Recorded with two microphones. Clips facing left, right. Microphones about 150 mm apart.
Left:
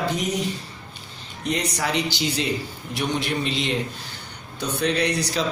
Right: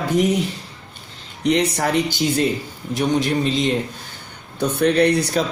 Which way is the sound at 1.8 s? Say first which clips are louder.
Right 5 dB; 50° right (ahead or behind).